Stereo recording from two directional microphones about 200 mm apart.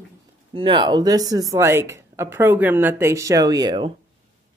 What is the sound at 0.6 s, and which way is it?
Speech, 25° right (ahead or behind).